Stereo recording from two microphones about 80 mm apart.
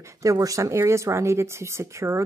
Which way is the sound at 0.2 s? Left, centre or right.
Right.